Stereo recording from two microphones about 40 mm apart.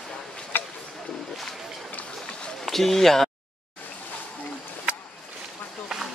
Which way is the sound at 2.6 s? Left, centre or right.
Centre.